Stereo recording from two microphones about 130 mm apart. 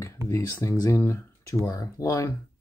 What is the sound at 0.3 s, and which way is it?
Speech, 25° left (ahead or behind).